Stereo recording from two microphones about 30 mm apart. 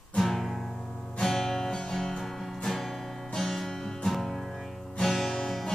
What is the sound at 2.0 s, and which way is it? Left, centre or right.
Music, centre.